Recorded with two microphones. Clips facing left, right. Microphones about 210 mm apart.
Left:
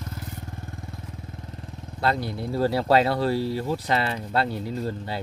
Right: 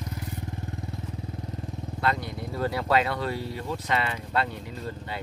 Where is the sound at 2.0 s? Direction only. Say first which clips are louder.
Left 4 dB; 30° left (ahead or behind).